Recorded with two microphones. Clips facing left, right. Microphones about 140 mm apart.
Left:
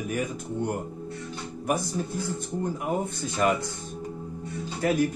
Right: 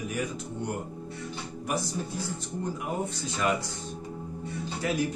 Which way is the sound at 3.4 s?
50° left (ahead or behind).